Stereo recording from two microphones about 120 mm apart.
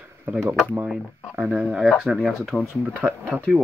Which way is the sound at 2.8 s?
15° right (ahead or behind).